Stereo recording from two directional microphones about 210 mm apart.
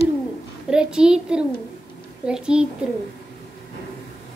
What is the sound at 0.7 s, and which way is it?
A child's voice, 5° right (ahead or behind).